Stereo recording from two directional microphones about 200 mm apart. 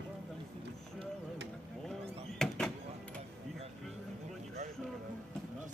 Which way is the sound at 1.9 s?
5° left (ahead or behind).